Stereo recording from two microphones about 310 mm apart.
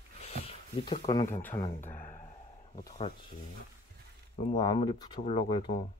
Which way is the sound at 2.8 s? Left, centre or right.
Left.